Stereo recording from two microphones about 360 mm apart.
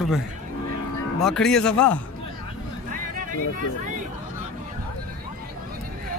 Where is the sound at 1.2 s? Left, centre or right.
Centre.